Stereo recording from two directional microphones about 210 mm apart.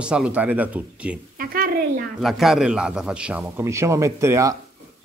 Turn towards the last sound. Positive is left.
turn(degrees=-15)  # may be behind; listen again after turning